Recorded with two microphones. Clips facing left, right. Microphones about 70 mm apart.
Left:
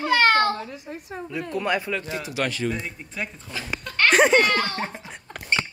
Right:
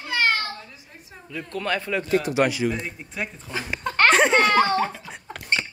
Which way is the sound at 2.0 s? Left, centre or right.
Right.